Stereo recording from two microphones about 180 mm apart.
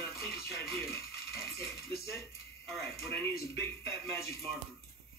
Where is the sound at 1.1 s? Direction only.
65° left (ahead or behind).